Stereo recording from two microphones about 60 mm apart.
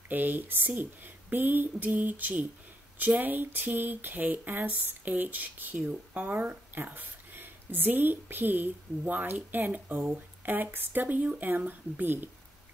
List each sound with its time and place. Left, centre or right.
0.1 s speech: right